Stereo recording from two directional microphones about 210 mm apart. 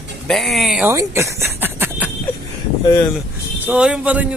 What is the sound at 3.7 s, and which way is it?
Speech, 5° right (ahead or behind).